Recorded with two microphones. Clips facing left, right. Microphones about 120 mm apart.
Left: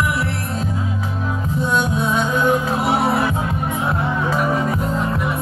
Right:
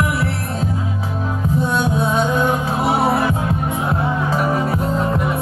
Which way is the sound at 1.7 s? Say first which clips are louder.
Left 1 dB; 40° right (ahead or behind).